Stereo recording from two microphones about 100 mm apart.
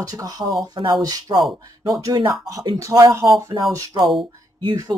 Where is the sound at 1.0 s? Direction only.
40° right (ahead or behind).